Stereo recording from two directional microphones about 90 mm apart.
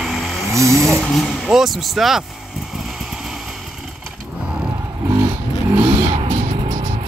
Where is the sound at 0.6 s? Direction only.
35° right (ahead or behind).